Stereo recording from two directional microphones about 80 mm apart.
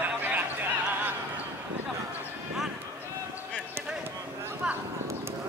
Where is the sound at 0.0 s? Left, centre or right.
Right.